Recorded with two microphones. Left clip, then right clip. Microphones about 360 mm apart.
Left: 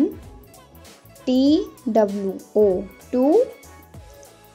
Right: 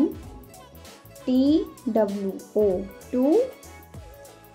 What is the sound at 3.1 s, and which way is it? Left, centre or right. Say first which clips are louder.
Speech: left 4 dB; centre.